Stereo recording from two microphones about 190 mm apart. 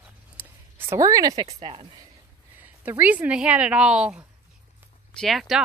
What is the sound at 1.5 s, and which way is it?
Speech, 30° right (ahead or behind).